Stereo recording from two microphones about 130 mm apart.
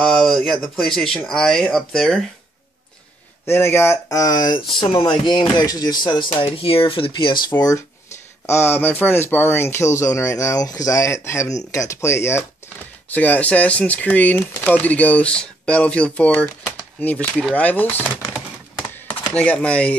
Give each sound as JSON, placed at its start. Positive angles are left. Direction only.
{"t": 0.0, "sound": "speech", "side_deg": 5}
{"t": 3.4, "sound": "speech", "side_deg": 15}
{"t": 8.5, "sound": "speech", "side_deg": 20}